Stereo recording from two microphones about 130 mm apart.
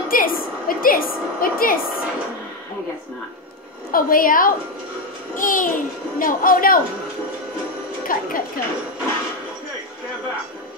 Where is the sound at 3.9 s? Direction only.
90° left.